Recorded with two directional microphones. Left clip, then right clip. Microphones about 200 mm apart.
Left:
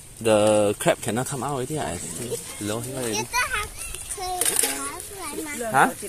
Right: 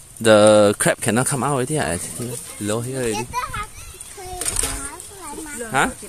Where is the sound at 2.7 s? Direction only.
60° right (ahead or behind).